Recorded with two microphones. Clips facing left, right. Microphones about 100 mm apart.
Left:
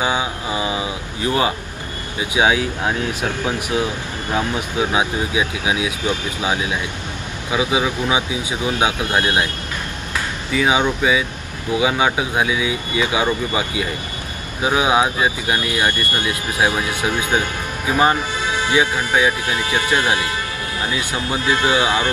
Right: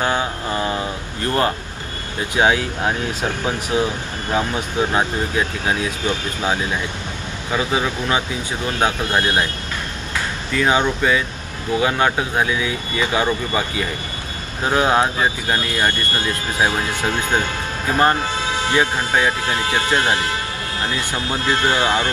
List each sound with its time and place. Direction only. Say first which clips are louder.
0.0 s a sound: even; 10° left (ahead or behind)
2.1 s speech: even; 10° left (ahead or behind)
10.5 s speech: even; 10° left (ahead or behind)
20.9 s speech: left 2 dB; 15° left (ahead or behind)